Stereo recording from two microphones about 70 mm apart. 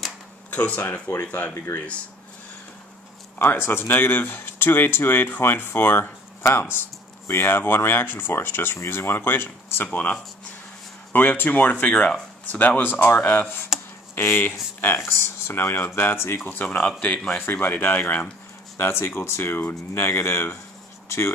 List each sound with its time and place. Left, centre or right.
0.5 s speech: left
3.3 s speech: left
11.1 s speech: left
16.4 s a man's voice: left
17.4 s speech: left